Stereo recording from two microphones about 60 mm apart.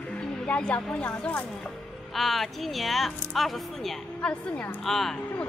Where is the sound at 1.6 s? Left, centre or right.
Centre.